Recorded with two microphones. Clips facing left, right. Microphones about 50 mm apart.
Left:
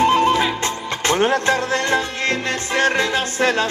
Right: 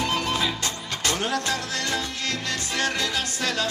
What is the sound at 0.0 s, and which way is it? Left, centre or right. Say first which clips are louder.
Music: left 10 dB; left.